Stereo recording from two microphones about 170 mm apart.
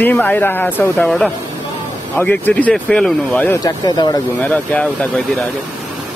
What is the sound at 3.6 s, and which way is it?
Speech, 25° left (ahead or behind).